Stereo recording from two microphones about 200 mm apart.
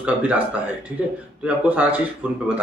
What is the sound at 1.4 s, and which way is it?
Speech, 5° right (ahead or behind).